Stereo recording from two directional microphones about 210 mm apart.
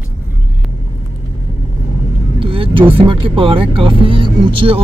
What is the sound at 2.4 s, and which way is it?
Speech, 25° right (ahead or behind).